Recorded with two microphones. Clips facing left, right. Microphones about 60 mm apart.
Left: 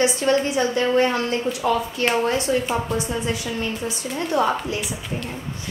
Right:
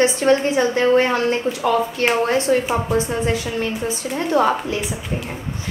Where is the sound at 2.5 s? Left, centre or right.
Right.